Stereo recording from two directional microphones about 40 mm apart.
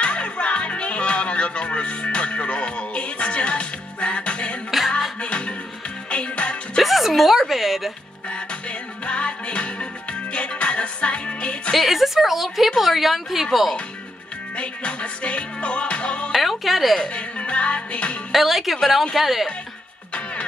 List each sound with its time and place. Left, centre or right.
0.0 s music: left
4.6 s music: centre
5.2 s music: left
6.8 s a sound: centre
9.0 s music: left
11.7 s a woman's voice: centre
14.6 s music: left
16.3 s a woman's voice: centre
17.0 s music: left
18.3 s a woman's voice: centre